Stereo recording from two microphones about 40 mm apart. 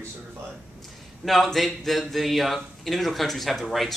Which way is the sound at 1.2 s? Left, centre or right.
Centre.